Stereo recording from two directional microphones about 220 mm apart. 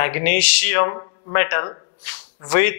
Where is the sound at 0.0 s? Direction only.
15° left (ahead or behind).